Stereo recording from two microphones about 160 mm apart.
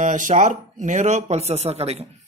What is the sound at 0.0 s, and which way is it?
Speech, 50° right (ahead or behind).